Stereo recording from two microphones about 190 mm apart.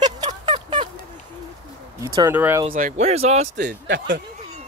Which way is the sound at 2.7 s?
40° right (ahead or behind).